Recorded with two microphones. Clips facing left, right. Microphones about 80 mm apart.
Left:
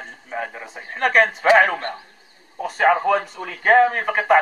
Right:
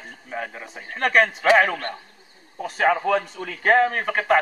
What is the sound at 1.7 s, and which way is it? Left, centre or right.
Speech, left.